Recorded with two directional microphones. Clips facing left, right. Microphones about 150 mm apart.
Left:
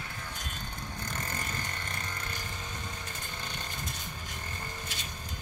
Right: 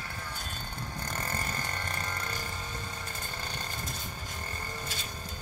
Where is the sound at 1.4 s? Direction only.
35° right (ahead or behind).